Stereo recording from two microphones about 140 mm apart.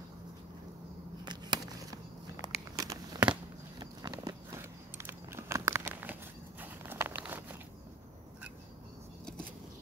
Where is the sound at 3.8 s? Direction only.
30° right (ahead or behind); by 7.5 s 10° right (ahead or behind).